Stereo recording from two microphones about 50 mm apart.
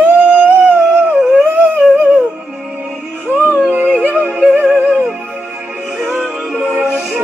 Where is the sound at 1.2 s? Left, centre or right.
Centre.